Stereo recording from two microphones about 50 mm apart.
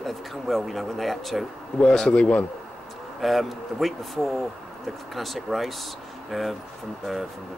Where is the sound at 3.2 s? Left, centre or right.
Centre.